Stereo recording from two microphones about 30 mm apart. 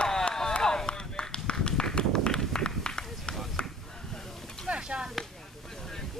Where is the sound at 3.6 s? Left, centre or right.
Left.